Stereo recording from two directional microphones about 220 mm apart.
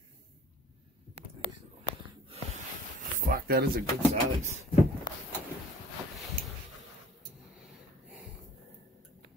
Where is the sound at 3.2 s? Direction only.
40° right (ahead or behind).